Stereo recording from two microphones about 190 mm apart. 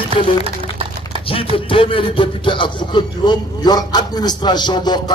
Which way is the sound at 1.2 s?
30° left (ahead or behind).